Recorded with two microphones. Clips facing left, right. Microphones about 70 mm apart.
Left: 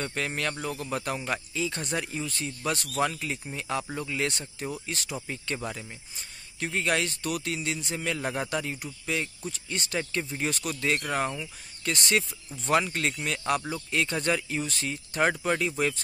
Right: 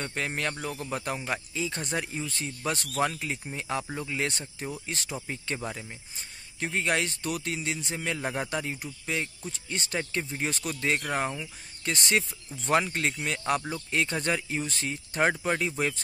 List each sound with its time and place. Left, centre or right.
0.0 s speech: centre
0.6 s speech: centre
6.6 s speech: right